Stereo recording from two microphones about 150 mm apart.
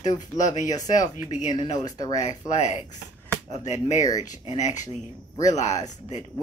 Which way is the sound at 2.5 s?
50° left (ahead or behind).